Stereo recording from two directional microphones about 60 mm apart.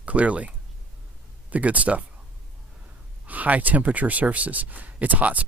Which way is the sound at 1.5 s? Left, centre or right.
Right.